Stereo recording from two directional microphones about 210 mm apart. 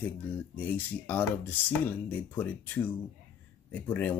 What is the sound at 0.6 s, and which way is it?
Speech, 10° left (ahead or behind).